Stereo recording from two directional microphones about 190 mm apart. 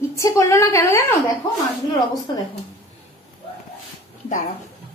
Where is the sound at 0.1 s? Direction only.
15° left (ahead or behind).